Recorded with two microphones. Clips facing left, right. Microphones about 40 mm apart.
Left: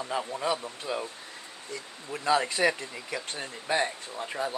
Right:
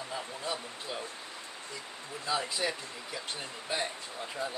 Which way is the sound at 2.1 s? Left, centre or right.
Left.